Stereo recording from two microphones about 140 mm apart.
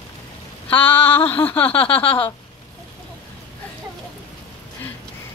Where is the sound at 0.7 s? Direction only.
15° left (ahead or behind).